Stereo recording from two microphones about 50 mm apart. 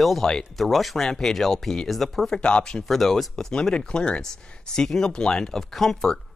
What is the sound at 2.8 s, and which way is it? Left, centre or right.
Speech, centre.